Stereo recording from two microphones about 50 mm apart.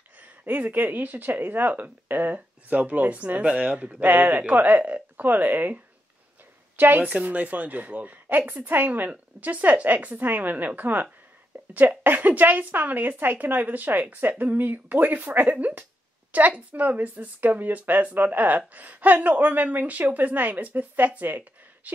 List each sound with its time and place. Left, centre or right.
0.2 s speech: right
7.0 s speech: right